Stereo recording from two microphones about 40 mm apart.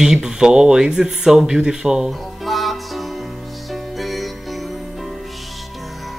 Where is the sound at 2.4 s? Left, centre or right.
Centre.